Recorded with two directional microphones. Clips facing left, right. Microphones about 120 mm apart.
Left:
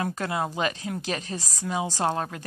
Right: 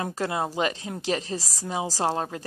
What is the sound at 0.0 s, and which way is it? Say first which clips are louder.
A woman's voice: even; 30° right (ahead or behind).